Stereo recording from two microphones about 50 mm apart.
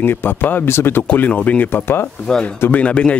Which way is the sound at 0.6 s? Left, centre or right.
Left.